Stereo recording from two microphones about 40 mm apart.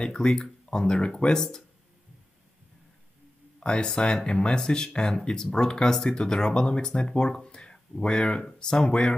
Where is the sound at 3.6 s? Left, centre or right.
Left.